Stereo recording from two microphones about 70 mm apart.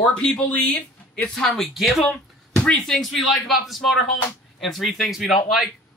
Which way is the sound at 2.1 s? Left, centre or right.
Centre.